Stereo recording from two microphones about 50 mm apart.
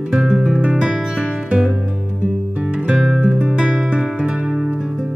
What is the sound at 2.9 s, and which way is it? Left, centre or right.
Music, centre.